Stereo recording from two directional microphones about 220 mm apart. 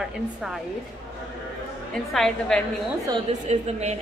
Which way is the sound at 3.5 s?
30° right (ahead or behind).